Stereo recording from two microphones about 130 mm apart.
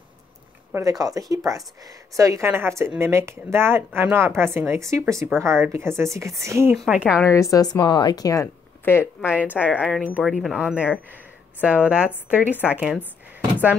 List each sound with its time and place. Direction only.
0.8 s speech: 25° right (ahead or behind); by 7.2 s 10° right (ahead or behind)
7.2 s speech: 20° left (ahead or behind)
9.2 s speech: 10° right (ahead or behind)